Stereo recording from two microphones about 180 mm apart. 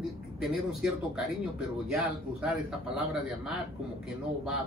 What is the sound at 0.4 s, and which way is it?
Speech, centre (ahead or behind).